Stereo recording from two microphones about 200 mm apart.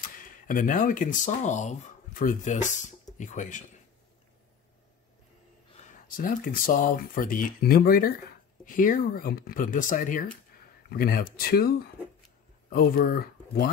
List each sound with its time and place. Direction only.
0.5 s speech: 40° left (ahead or behind)
5.8 s speech: 40° left (ahead or behind)